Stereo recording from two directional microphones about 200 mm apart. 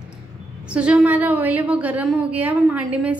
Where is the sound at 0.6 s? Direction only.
5° right (ahead or behind).